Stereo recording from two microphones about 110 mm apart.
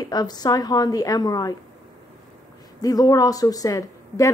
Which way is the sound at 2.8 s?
35° left (ahead or behind).